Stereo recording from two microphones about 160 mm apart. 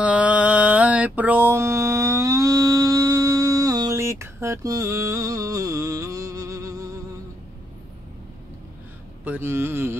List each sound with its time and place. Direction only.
0.0 s mantra: 10° right (ahead or behind)
9.2 s speech: 10° right (ahead or behind)